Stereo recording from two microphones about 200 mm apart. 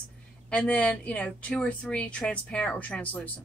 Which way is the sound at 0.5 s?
5° left (ahead or behind).